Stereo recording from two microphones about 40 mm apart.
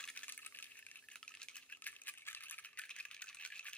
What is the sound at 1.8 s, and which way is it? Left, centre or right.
Coin, left.